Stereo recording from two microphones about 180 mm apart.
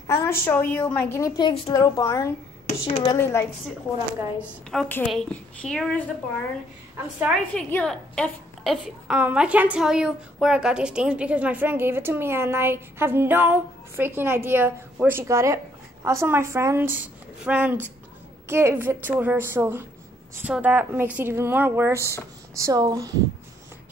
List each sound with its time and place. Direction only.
0.0 s a woman's voice: 15° left (ahead or behind)
2.6 s speech: 45° left (ahead or behind)
3.1 s a woman's voice: 15° left (ahead or behind)
4.2 s a woman's voice: 10° right (ahead or behind)
4.6 s a woman's voice: 5° left (ahead or behind)
7.5 s a woman's voice: 5° left (ahead or behind); by 23.1 s 20° right (ahead or behind)